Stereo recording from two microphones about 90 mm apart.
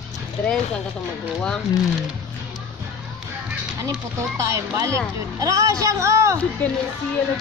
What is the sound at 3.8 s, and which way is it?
Speech, 35° right (ahead or behind).